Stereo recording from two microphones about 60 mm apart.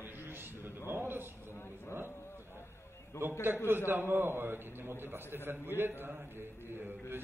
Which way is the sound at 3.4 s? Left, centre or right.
Right.